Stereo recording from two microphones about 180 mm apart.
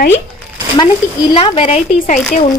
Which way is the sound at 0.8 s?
25° left (ahead or behind).